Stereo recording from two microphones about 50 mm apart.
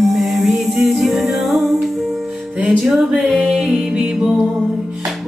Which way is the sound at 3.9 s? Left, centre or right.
Centre.